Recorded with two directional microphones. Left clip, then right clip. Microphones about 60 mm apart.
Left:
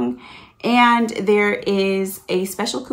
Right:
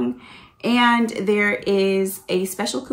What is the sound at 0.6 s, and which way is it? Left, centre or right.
Speech, left.